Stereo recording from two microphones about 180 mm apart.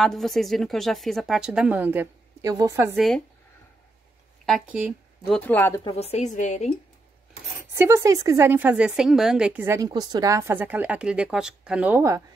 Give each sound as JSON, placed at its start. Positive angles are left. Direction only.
{"t": 0.0, "sound": "a woman's voice", "side_deg": 0}
{"t": 3.0, "sound": "a woman's voice", "side_deg": 0}
{"t": 4.5, "sound": "a woman's voice", "side_deg": -5}
{"t": 5.3, "sound": "speech", "side_deg": 10}
{"t": 5.9, "sound": "a woman's voice", "side_deg": 35}
{"t": 7.7, "sound": "a woman's voice", "side_deg": -15}